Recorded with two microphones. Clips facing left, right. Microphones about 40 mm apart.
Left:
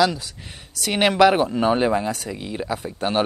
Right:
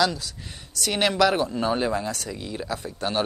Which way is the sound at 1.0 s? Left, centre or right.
Left.